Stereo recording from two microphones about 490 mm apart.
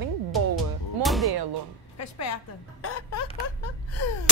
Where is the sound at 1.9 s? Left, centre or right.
Left.